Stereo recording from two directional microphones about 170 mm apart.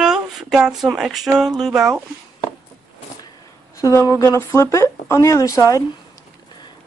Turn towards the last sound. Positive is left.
turn(degrees=20)  # may be behind; listen again after turning